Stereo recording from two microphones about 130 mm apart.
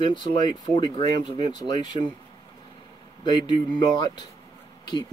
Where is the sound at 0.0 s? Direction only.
35° left (ahead or behind).